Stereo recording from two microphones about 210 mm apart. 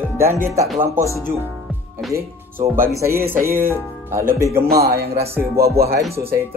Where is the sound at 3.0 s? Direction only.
15° right (ahead or behind).